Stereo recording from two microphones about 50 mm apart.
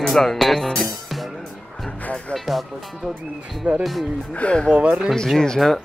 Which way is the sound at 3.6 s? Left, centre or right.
Right.